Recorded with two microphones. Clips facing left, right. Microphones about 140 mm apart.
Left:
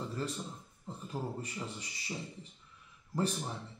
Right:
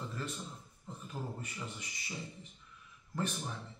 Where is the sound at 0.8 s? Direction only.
30° left (ahead or behind).